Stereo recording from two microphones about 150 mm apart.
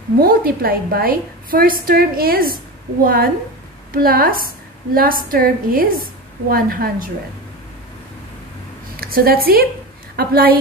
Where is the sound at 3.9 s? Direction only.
75° right (ahead or behind).